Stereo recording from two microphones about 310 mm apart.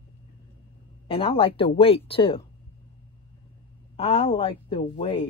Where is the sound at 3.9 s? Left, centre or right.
Centre.